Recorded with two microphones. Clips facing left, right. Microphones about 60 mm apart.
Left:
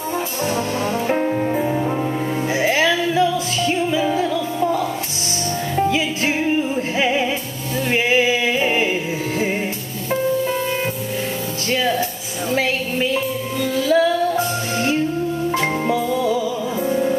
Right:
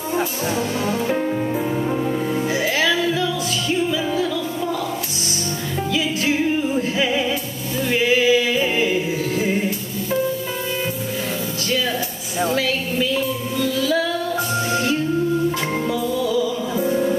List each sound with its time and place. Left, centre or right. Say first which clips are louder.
0.8 s music: left 2 dB; left
5.8 s music: left 3 dB; left
12.5 s music: left 1 dB; left
16.2 s music: left 1 dB; left